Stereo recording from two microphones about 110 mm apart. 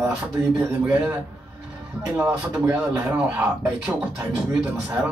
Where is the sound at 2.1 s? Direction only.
10° right (ahead or behind).